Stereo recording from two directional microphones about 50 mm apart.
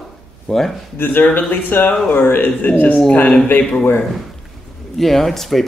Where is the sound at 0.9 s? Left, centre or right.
Left.